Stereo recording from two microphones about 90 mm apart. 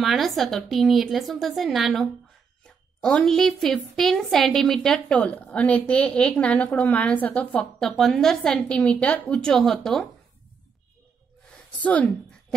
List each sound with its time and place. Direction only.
0.0 s a woman's voice: centre (ahead or behind)
11.8 s a woman's voice: 15° left (ahead or behind)